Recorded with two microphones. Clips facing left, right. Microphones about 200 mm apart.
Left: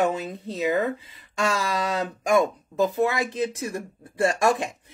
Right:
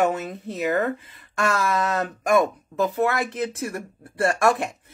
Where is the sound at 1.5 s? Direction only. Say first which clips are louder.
Right 3 dB; 10° left (ahead or behind).